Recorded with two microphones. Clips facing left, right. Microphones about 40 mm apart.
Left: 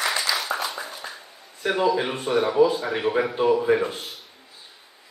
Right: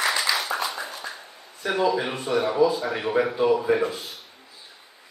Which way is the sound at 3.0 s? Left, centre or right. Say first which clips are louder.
Even; centre.